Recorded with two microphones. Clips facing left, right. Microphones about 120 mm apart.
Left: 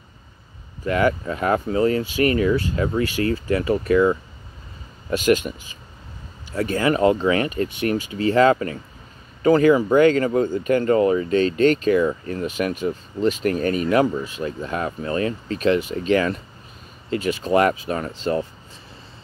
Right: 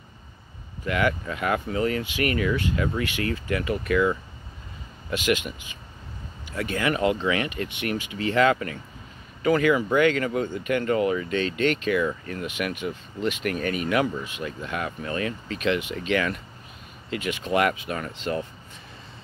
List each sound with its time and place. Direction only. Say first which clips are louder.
0.8 s speech: left 5 dB; 35° left (ahead or behind)